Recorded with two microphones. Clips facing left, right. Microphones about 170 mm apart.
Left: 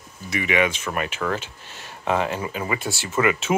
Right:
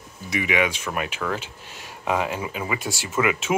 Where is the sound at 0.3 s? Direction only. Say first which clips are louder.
Left 1 dB; 10° right (ahead or behind).